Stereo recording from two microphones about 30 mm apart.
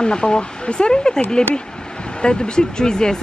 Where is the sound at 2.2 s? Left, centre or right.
Left.